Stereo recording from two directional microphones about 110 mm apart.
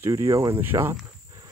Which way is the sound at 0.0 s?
30° right (ahead or behind).